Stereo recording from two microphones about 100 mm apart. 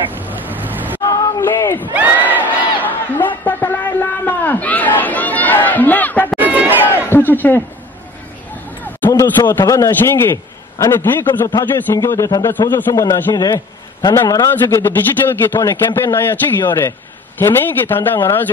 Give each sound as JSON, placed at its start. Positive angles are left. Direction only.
{"t": 0.1, "sound": "vehicle", "side_deg": -20}
{"t": 1.4, "sound": "a man's voice", "side_deg": 25}
{"t": 1.9, "sound": "crowd", "side_deg": -15}
{"t": 2.8, "sound": "a sound", "side_deg": 20}
{"t": 6.3, "sound": "chatter", "side_deg": -15}
{"t": 7.1, "sound": "a sound", "side_deg": 20}
{"t": 9.1, "sound": "a man's voice", "side_deg": 30}
{"t": 12.5, "sound": "a man's voice", "side_deg": 20}
{"t": 12.9, "sound": "a man's voice", "side_deg": 40}
{"t": 14.1, "sound": "a man's voice", "side_deg": 30}